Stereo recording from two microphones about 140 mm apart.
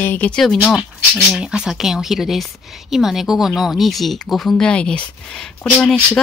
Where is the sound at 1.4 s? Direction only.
5° right (ahead or behind).